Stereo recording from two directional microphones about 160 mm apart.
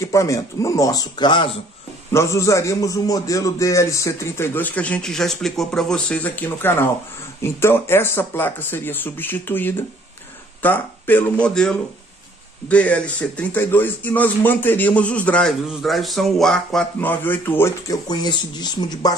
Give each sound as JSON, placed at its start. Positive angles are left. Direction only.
{"t": 0.0, "sound": "speech", "side_deg": 20}
{"t": 2.1, "sound": "speech", "side_deg": 20}